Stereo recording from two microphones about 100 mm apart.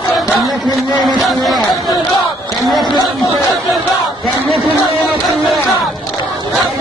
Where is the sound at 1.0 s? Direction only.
Centre (ahead or behind).